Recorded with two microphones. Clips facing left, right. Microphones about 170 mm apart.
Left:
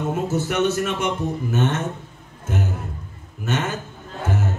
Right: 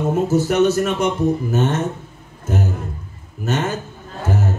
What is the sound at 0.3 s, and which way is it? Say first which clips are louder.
A man's voice: right 6 dB; 40° right (ahead or behind).